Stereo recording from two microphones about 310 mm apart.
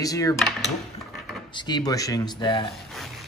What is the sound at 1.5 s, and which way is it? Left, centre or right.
Speech, centre.